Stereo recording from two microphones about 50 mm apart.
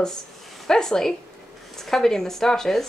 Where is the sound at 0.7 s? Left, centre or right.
Centre.